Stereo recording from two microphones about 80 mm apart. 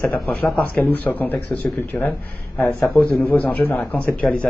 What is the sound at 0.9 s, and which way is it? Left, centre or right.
Speech, centre.